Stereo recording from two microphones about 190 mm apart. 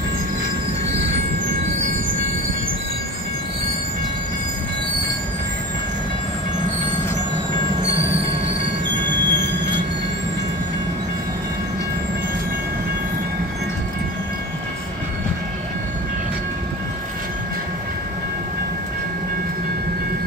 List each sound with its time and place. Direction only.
8.0 s train: 30° right (ahead or behind)
8.3 s train: 65° right (ahead or behind)